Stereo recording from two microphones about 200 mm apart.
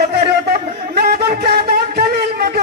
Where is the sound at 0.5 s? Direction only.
50° right (ahead or behind).